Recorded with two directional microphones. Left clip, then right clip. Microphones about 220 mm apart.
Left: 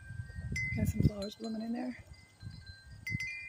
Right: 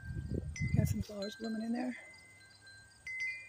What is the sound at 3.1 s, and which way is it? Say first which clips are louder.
Wind chime: left 2 dB; 30° left (ahead or behind).